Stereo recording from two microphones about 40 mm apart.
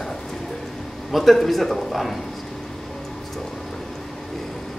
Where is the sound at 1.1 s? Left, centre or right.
Centre.